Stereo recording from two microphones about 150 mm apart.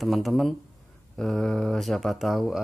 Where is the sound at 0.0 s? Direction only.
Centre (ahead or behind).